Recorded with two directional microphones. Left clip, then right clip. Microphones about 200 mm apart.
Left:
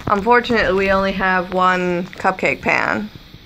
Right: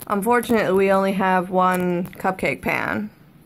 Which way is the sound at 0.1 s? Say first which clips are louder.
Left 5 dB; 15° right (ahead or behind).